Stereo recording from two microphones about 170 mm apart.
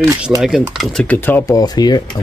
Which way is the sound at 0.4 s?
Centre (ahead or behind).